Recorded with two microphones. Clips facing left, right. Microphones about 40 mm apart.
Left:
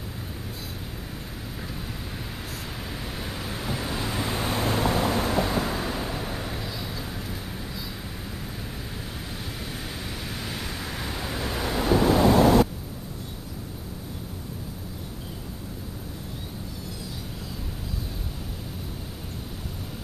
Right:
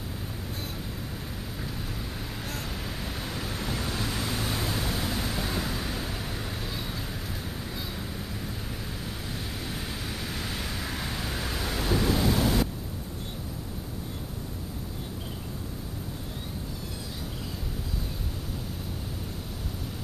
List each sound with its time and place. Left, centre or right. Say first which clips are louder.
3.0 s vehicle: left 1 dB; centre
10.2 s vehicle: left 1 dB; centre
12.4 s a sound: left 8 dB; left